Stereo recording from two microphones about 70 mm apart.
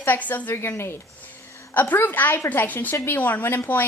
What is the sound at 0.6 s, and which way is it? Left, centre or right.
A woman's voice, left.